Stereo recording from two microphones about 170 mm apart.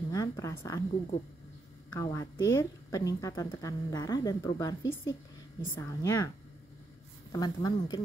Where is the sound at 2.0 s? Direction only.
20° left (ahead or behind).